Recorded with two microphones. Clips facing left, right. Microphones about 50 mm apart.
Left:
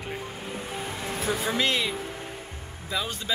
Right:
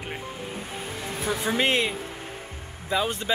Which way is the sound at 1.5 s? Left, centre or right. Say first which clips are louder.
Right 2 dB; right.